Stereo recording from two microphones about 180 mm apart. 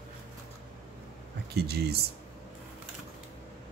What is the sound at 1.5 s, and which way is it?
Speech, 65° right (ahead or behind).